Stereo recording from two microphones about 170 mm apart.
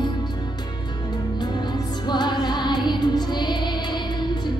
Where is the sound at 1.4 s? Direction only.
25° left (ahead or behind).